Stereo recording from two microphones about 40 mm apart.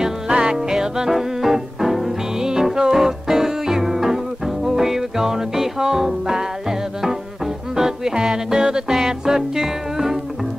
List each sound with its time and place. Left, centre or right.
0.3 s music: right
7.7 s music: centre